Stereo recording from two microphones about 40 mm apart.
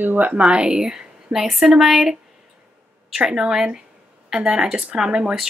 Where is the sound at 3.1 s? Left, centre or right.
Centre.